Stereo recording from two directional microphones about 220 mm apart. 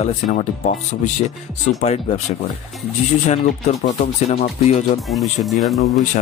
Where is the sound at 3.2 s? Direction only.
30° left (ahead or behind).